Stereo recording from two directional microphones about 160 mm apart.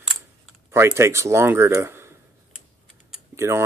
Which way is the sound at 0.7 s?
15° right (ahead or behind).